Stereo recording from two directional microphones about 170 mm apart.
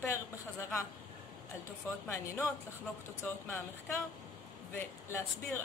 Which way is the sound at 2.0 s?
15° left (ahead or behind).